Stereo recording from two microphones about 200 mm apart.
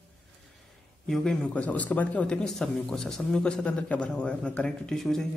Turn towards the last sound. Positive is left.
turn(degrees=0)  # may be behind; listen again after turning